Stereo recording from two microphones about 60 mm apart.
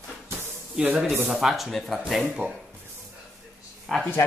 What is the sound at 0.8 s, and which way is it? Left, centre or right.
Speech, centre.